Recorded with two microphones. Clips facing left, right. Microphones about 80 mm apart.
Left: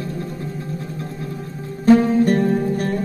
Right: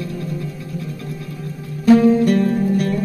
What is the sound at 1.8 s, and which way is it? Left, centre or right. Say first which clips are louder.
Music: right 2 dB; left.